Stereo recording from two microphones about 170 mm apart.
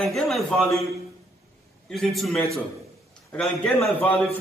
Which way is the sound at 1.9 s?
Centre (ahead or behind).